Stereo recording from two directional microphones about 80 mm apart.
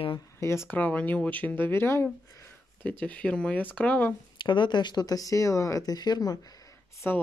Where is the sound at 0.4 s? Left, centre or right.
Left.